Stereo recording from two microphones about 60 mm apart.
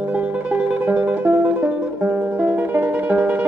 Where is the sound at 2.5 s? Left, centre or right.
Right.